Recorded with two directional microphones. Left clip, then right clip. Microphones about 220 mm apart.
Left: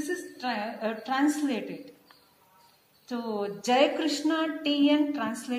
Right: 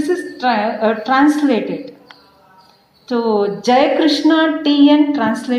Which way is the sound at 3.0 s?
35° left (ahead or behind).